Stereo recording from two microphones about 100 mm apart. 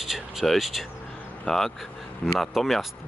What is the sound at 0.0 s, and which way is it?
Speech, 5° right (ahead or behind).